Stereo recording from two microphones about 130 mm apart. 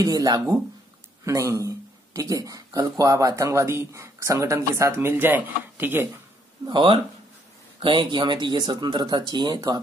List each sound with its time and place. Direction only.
0.0 s speech: 30° right (ahead or behind)
6.6 s speech: 40° right (ahead or behind)